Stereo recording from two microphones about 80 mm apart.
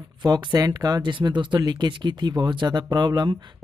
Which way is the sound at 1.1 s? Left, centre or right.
Right.